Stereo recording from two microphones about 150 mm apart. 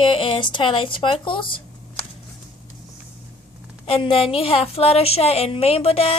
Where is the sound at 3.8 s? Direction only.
40° left (ahead or behind).